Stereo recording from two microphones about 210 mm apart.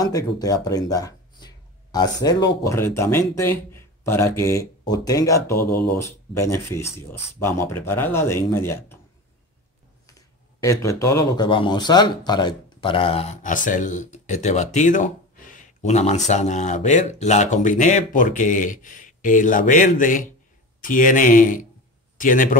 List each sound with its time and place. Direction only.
0.0 s speech: 15° left (ahead or behind)
5.7 s speech: 50° left (ahead or behind)
5.9 s speech: 15° left (ahead or behind)
10.0 s a man's voice: 15° left (ahead or behind); by 22.6 s 40° left (ahead or behind)